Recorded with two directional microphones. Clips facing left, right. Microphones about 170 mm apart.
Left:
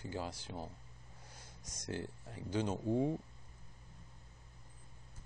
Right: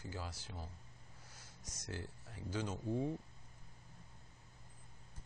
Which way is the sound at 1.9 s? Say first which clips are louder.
Left 6 dB; 20° left (ahead or behind).